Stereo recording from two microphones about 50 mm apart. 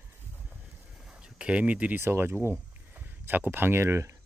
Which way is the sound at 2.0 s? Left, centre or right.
Right.